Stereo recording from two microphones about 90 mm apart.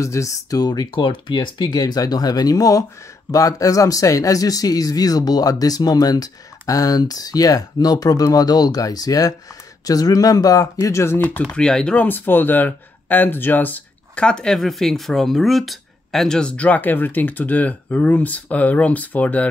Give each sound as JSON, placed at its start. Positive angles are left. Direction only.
{"t": 0.0, "sound": "speech", "side_deg": 35}
{"t": 11.5, "sound": "speech", "side_deg": 10}